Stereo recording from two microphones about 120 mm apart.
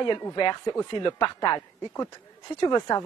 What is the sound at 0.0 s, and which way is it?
Speech, 35° left (ahead or behind).